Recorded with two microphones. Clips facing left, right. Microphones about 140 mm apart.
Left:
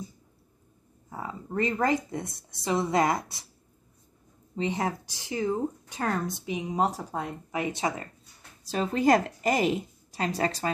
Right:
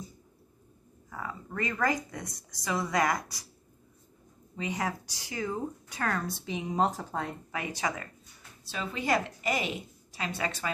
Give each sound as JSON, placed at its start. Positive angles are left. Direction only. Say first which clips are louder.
{"t": 1.1, "sound": "speech", "louder": "left 5 dB", "side_deg": 25}
{"t": 4.6, "sound": "speech", "louder": "left 4 dB", "side_deg": 30}
{"t": 7.7, "sound": "speech", "louder": "left 3 dB", "side_deg": 30}
{"t": 8.6, "sound": "a woman's voice", "louder": "left 8 dB", "side_deg": 40}